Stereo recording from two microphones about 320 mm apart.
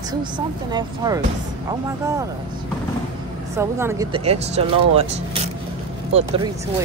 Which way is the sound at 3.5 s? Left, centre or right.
Centre.